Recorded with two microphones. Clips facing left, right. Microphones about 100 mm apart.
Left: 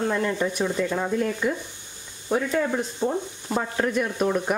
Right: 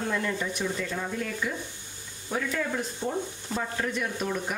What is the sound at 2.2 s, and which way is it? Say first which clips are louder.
Speech: left 6 dB; 25° left (ahead or behind).